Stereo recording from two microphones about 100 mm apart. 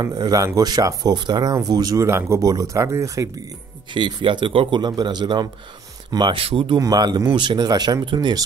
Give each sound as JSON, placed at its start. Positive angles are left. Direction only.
{"t": 0.0, "sound": "speech", "side_deg": -40}
{"t": 2.0, "sound": "speech", "side_deg": -30}
{"t": 3.9, "sound": "a man's voice", "side_deg": -55}
{"t": 6.1, "sound": "speech", "side_deg": -60}
{"t": 6.8, "sound": "a man's voice", "side_deg": -40}